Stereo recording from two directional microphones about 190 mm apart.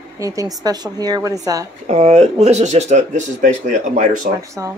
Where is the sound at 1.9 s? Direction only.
35° right (ahead or behind).